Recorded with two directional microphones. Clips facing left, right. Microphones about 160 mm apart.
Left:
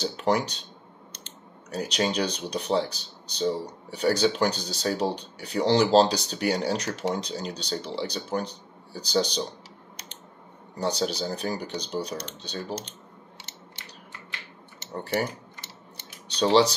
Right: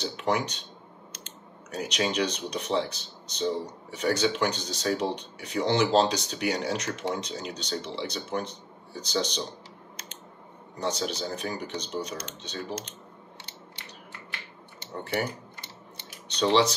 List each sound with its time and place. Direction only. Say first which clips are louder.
0.1 s speech: left 1 dB; 35° left (ahead or behind)
1.7 s speech: left 2 dB; 35° left (ahead or behind)
10.8 s speech: left 3 dB; 35° left (ahead or behind)
16.3 s speech: left 3 dB; 35° left (ahead or behind)